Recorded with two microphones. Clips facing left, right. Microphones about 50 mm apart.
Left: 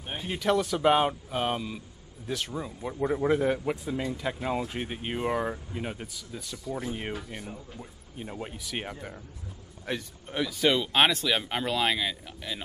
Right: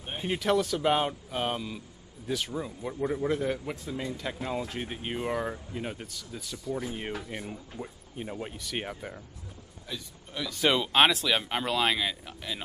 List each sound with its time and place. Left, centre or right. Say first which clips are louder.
0.4 s speech: left 2 dB; centre
7.2 s speech: right 1 dB; centre
8.4 s speech: left 1 dB; centre
9.9 s a man's voice: left 7 dB; left
10.5 s speech: right 1 dB; centre